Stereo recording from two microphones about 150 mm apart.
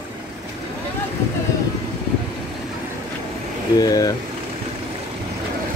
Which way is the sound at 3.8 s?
25° left (ahead or behind).